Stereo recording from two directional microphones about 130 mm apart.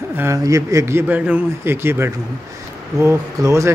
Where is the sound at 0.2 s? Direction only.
25° right (ahead or behind).